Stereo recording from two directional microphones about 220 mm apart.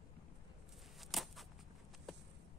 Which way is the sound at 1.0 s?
Centre (ahead or behind).